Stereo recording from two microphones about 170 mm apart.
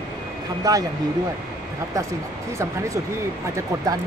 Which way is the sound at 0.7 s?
20° right (ahead or behind).